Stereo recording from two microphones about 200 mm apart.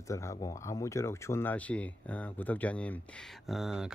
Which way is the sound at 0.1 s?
15° left (ahead or behind).